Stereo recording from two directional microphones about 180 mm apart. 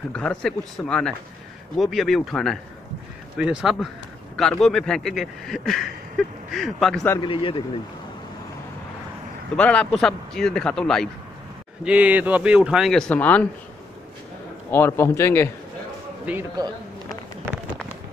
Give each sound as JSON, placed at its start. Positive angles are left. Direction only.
{"t": 0.1, "sound": "speech", "side_deg": 5}
{"t": 7.2, "sound": "speech", "side_deg": 30}
{"t": 9.6, "sound": "speech", "side_deg": 5}
{"t": 11.8, "sound": "speech", "side_deg": -5}
{"t": 14.7, "sound": "speech", "side_deg": 15}